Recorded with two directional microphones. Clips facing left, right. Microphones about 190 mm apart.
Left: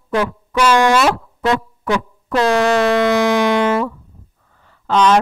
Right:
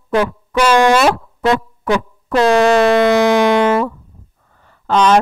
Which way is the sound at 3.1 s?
50° right (ahead or behind).